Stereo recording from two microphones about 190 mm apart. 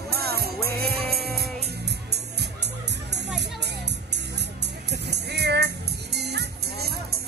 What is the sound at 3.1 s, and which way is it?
Music, 65° right (ahead or behind).